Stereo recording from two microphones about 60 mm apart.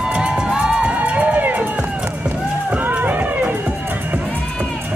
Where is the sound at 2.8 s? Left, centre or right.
Right.